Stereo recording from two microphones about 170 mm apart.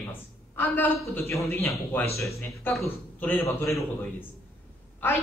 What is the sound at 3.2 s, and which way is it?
Speech, 15° left (ahead or behind).